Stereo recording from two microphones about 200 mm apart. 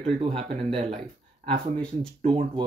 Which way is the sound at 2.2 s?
30° right (ahead or behind).